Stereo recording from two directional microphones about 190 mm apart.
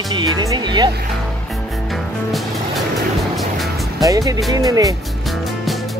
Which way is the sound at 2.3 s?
Centre (ahead or behind).